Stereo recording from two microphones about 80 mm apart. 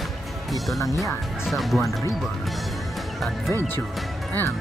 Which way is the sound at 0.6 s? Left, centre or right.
Centre.